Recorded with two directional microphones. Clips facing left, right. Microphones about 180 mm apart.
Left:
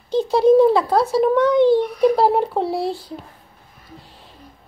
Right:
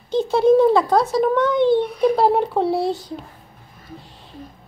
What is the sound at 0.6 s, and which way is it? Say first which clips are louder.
Speech: left 1 dB; 5° left (ahead or behind).